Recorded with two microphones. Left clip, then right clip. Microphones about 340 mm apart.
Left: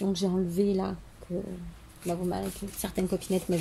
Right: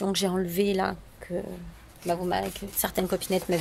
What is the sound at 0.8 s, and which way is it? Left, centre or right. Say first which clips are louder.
Speech: right 6 dB; right.